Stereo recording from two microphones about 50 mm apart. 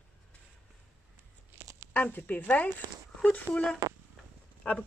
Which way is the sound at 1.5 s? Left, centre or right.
Right.